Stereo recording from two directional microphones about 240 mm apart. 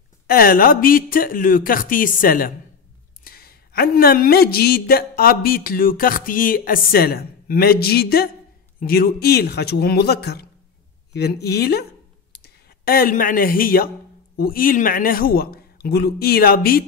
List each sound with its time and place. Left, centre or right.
0.3 s speech: left
12.3 s a sound: left
14.3 s speech: left